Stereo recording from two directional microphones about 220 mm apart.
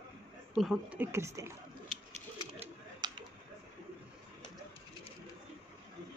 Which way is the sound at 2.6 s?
20° right (ahead or behind).